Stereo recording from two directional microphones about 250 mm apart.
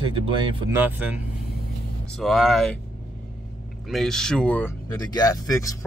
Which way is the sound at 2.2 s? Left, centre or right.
Centre.